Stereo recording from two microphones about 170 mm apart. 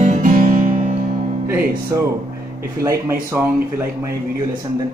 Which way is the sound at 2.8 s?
15° right (ahead or behind).